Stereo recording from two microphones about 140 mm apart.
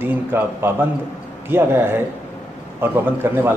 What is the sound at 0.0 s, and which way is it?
A man's voice, 15° right (ahead or behind).